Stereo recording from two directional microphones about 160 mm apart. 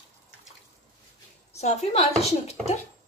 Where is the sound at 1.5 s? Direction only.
45° left (ahead or behind).